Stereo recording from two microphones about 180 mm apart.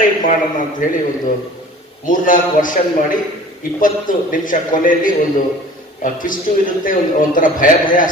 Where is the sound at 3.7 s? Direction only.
50° left (ahead or behind).